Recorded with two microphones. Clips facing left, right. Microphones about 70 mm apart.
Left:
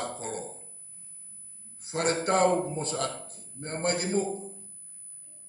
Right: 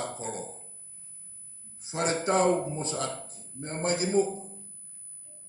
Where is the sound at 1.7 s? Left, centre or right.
Left.